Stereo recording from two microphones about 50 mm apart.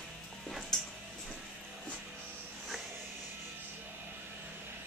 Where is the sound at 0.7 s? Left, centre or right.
Centre.